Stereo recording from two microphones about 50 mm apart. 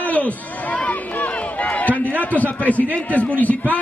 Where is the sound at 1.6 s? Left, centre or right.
Left.